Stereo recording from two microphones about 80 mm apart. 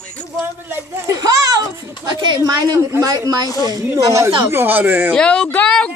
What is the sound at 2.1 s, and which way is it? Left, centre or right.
A woman's voice, right.